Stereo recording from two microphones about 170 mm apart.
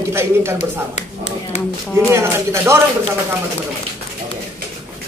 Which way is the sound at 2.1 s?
15° right (ahead or behind).